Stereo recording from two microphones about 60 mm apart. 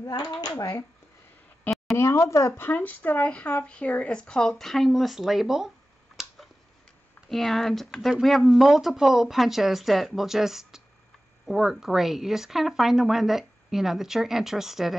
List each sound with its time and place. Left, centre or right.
0.0 s speech: left
2.0 s speech: left
2.5 s speech: left; by 5.7 s centre
7.2 s speech: centre